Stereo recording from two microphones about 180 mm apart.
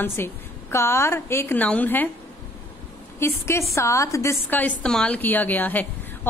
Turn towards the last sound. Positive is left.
turn(degrees=10)  # may be behind; listen again after turning